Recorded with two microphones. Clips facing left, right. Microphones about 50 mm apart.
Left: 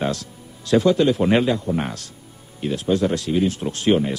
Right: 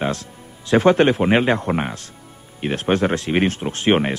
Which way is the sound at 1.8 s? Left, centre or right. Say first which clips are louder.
Right 1 dB; right.